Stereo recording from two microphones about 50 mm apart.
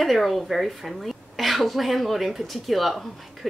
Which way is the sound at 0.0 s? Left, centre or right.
Centre.